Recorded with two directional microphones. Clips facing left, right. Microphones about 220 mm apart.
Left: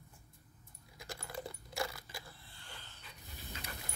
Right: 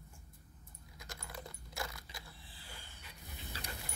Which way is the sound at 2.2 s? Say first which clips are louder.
Even; centre (ahead or behind).